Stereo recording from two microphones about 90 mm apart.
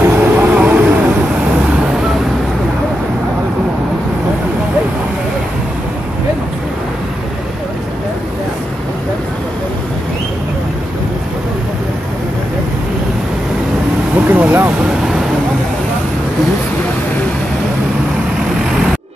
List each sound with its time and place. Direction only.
0.0 s vehicle: 20° right (ahead or behind)
14.1 s vehicle: 20° right (ahead or behind)